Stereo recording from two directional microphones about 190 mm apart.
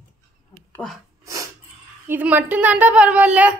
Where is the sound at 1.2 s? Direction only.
15° right (ahead or behind).